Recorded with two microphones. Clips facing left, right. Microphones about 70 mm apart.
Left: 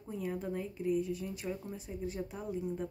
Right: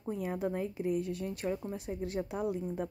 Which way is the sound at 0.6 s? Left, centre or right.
Right.